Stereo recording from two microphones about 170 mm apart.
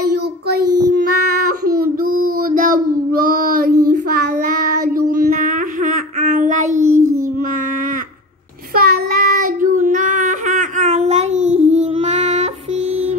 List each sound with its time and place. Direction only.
1.8 s child singing: 55° right (ahead or behind)
8.7 s child singing: 55° right (ahead or behind); by 12.4 s 40° right (ahead or behind)